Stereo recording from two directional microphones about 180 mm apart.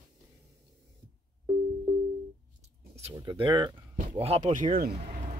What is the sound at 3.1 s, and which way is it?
Speech, 25° right (ahead or behind).